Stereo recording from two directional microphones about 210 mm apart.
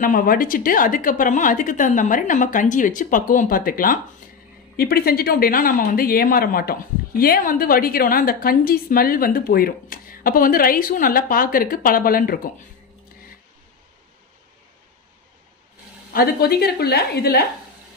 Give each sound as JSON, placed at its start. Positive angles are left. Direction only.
{"t": 0.0, "sound": "a woman's voice", "side_deg": 40}
{"t": 16.1, "sound": "speech", "side_deg": 45}